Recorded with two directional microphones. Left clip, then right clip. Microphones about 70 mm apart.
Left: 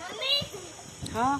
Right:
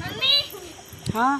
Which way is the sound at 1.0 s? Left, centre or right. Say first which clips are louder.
Right 6 dB; centre.